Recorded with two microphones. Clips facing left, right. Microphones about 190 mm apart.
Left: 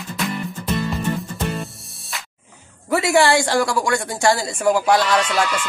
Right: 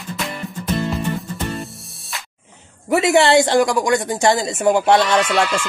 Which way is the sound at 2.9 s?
20° right (ahead or behind).